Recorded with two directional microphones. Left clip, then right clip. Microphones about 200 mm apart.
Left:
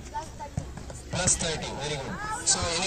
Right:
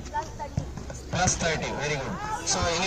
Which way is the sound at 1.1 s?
20° left (ahead or behind).